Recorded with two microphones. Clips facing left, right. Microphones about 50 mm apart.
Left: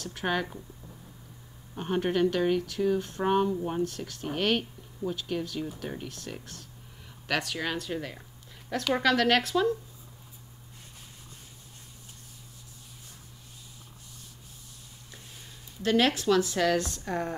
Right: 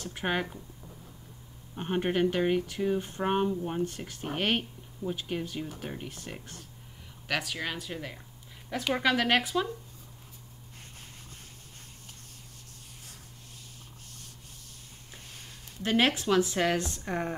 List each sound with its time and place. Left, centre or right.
0.0 s speech: centre
1.8 s speech: centre
7.2 s speech: centre
15.8 s speech: right